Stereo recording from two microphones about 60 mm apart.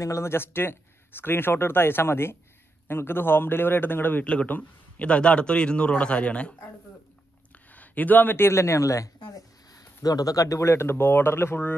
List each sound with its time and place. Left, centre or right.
0.0 s a man's voice: left; by 6.5 s centre
7.5 s speech: left